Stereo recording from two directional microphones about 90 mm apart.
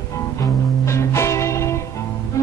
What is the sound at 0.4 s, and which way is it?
Music, 30° left (ahead or behind).